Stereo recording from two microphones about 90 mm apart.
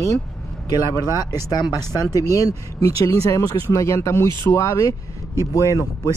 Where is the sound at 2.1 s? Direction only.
40° left (ahead or behind).